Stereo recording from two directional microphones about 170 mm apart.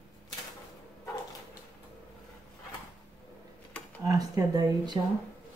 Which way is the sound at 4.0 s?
20° right (ahead or behind).